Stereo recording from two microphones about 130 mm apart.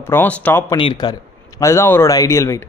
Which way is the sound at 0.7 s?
35° left (ahead or behind).